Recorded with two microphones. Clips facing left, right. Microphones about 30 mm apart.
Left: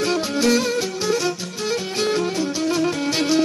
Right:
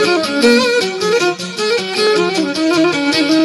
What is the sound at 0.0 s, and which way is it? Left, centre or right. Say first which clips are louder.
Music: right 8 dB; right.